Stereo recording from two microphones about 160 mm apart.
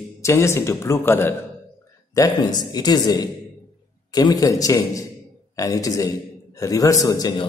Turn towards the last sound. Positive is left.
turn(degrees=20)  # may be behind; listen again after turning